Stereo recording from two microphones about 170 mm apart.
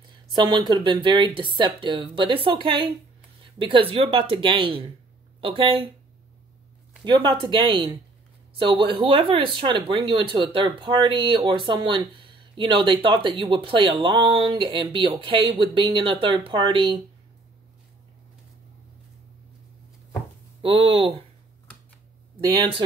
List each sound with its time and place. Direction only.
0.3 s speech: 25° right (ahead or behind)
7.1 s speech: 30° right (ahead or behind)
20.6 s speech: 30° right (ahead or behind)
22.5 s speech: 30° right (ahead or behind)